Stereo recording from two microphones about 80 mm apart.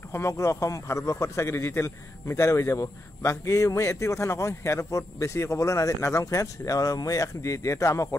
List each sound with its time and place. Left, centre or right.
0.1 s a man's voice: left